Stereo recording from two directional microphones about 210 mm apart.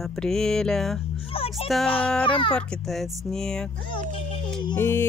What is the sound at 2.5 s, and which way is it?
Music, 5° left (ahead or behind).